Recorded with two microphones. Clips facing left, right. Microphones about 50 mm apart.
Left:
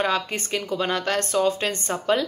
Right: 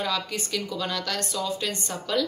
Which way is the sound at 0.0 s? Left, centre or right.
Left.